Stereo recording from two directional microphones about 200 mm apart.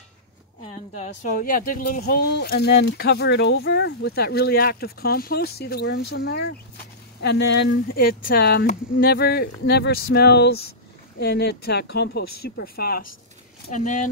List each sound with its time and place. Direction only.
0.9 s speech: 35° left (ahead or behind)
13.7 s speech: 40° left (ahead or behind)